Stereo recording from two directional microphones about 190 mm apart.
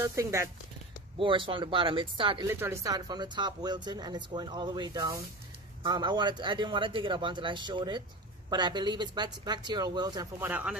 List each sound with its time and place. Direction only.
0.0 s speech: 15° right (ahead or behind)
1.1 s speech: 25° right (ahead or behind)
2.4 s speech: 15° right (ahead or behind)
10.5 s speech: 5° right (ahead or behind)